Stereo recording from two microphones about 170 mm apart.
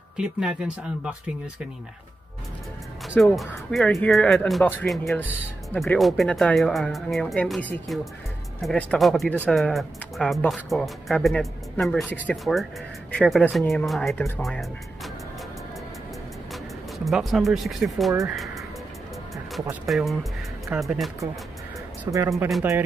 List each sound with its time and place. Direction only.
0.2 s speech: 5° right (ahead or behind)
3.3 s speech: 5° left (ahead or behind)
17.0 s speech: centre (ahead or behind)
19.9 s speech: centre (ahead or behind)
22.0 s speech: 20° right (ahead or behind)